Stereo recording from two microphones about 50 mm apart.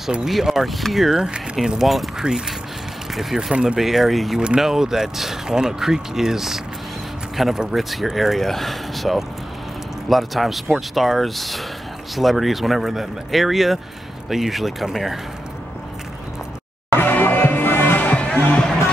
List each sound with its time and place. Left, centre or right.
0.3 s speech: centre
1.2 s speech: centre
1.9 s speech: centre
17.0 s music: left
18.1 s music: left